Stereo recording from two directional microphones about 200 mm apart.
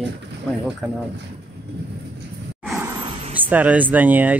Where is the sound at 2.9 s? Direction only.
25° right (ahead or behind).